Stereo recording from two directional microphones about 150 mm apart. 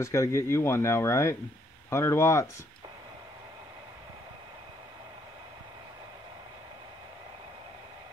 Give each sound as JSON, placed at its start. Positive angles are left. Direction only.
{"t": 0.0, "sound": "speech", "side_deg": 20}